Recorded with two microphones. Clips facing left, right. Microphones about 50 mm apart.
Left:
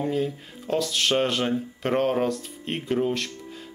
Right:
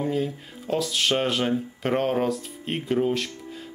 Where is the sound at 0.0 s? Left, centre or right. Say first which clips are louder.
Even; centre.